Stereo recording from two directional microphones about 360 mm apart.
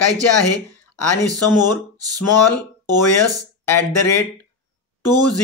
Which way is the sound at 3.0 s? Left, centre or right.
Left.